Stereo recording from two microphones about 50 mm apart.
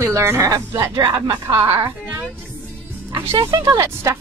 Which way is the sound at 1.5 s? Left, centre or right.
Right.